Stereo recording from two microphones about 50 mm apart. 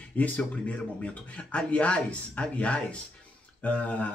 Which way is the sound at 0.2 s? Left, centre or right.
Left.